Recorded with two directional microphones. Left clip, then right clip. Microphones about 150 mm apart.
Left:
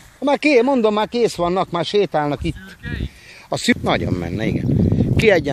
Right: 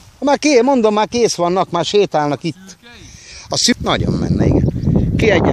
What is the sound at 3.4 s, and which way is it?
Speech, 15° right (ahead or behind).